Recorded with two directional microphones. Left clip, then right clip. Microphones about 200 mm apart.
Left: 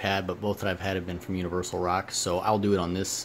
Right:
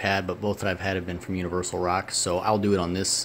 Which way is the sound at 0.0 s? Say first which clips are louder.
Right 3 dB; centre (ahead or behind).